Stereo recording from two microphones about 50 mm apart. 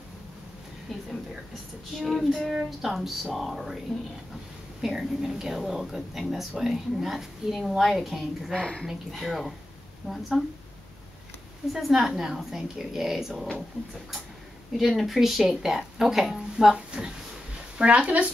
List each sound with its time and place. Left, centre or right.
2.0 s speech: centre
4.8 s speech: centre
8.5 s speech: centre
8.8 s speech: centre
11.7 s speech: centre
14.8 s speech: centre
16.7 s speech: centre